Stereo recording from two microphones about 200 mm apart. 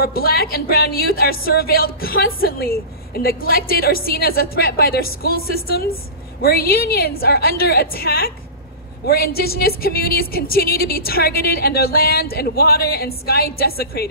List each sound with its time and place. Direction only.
0.0 s a woman's voice: 50° left (ahead or behind)